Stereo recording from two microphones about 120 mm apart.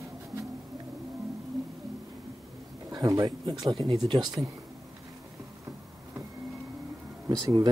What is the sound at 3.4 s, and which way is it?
Speech, 45° right (ahead or behind).